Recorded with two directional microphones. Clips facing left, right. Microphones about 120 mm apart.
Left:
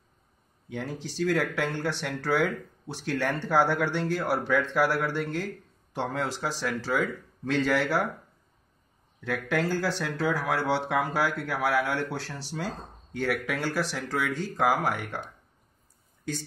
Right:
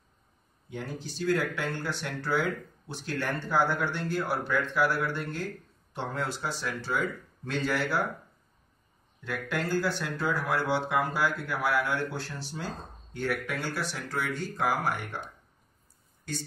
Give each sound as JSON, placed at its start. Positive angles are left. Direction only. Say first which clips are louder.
{"t": 0.7, "sound": "speech", "louder": "left 3 dB", "side_deg": 90}
{"t": 9.2, "sound": "speech", "louder": "left 4 dB", "side_deg": 80}
{"t": 13.1, "sound": "speech", "louder": "left 3 dB", "side_deg": 85}